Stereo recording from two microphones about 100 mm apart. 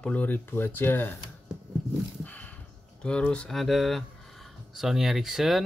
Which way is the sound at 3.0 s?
10° left (ahead or behind).